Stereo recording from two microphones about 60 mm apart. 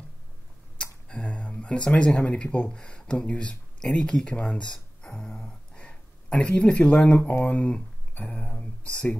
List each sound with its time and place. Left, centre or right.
1.0 s speech: centre